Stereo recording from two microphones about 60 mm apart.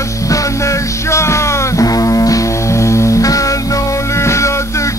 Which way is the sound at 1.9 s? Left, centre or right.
Left.